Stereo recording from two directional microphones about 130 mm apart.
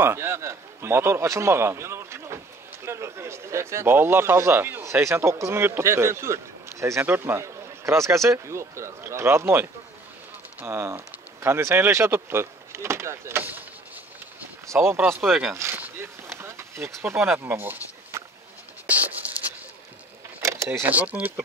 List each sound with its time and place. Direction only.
0.0 s a man's voice: 20° right (ahead or behind)
14.7 s speech: 20° right (ahead or behind)
15.5 s a sound: 20° right (ahead or behind)
20.3 s speech: 20° right (ahead or behind)